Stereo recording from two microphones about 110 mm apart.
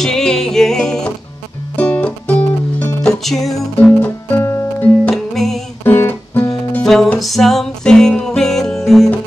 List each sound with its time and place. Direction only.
0.0 s music: 5° left (ahead or behind)
4.0 s music: 20° left (ahead or behind)
5.1 s music: centre (ahead or behind)
5.9 s music: 20° left (ahead or behind)
6.8 s music: 5° left (ahead or behind)